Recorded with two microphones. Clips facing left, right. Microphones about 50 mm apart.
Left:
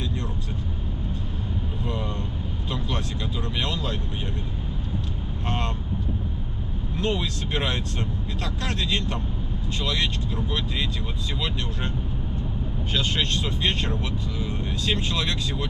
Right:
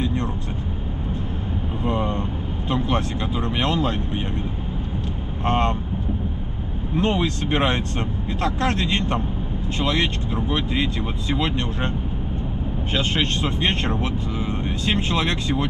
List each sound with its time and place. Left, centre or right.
1.9 s vehicle: right
3.4 s speech: right
5.4 s speech: right
7.0 s speech: right
12.9 s speech: right